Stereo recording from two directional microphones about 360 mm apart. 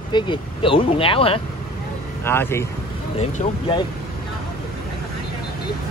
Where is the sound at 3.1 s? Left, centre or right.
Centre.